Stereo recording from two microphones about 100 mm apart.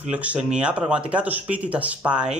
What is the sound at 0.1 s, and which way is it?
Speech, 15° right (ahead or behind).